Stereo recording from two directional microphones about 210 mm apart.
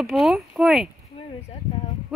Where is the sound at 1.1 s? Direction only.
25° left (ahead or behind).